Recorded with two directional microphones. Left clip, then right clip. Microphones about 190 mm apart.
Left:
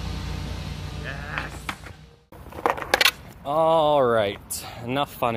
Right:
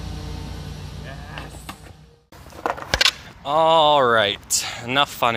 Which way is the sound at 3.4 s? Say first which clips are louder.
Right 4 dB; centre (ahead or behind).